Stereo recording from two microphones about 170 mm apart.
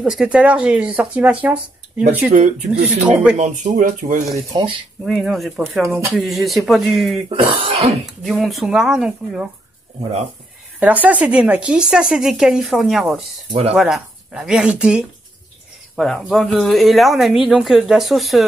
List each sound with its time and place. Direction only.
0.0 s a woman's voice: 5° right (ahead or behind)
3.3 s speech: 45° right (ahead or behind)
4.5 s speech: 30° right (ahead or behind)
5.0 s a woman's voice: centre (ahead or behind)
5.8 s speech: 15° right (ahead or behind)
6.1 s a woman's voice: centre (ahead or behind)
7.6 s speech: 30° right (ahead or behind)
8.2 s a woman's voice: centre (ahead or behind)
10.8 s a woman's voice: 10° right (ahead or behind)
13.5 s speech: 35° right (ahead or behind)
13.7 s a woman's voice: centre (ahead or behind)